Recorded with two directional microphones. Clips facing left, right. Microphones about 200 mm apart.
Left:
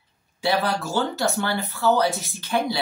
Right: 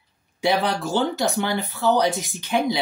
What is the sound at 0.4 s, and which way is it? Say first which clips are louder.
Speech: right 2 dB; 15° right (ahead or behind).